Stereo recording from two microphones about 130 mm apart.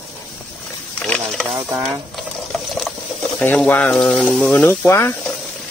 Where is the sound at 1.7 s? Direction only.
Centre (ahead or behind).